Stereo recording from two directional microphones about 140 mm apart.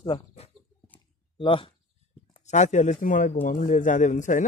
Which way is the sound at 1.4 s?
40° left (ahead or behind).